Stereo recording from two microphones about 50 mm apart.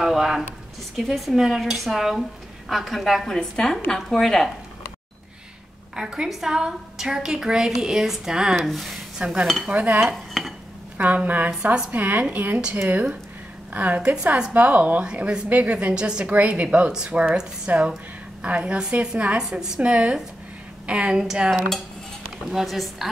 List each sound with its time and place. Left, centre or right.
0.0 s a sound: centre
0.9 s speech: centre
3.3 s a woman's voice: centre
5.9 s a woman's voice: centre
8.6 s speech: centre
9.2 s a woman's voice: centre
9.7 s a woman's voice: right
10.1 s dishes: centre
11.2 s speech: right
13.7 s a woman's voice: right
15.9 s a woman's voice: centre
16.3 s a woman's voice: right; by 21.6 s centre
21.6 s cutlery: centre
22.5 s speech: centre